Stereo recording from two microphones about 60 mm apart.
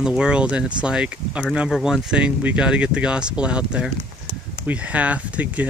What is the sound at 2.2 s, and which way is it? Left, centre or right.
Speech, right.